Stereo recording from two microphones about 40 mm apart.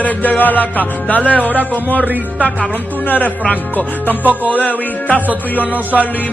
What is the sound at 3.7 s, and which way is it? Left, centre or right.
Music, left.